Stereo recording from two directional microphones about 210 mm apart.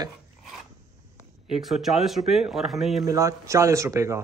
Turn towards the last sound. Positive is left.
turn(degrees=-15)  # may be behind; listen again after turning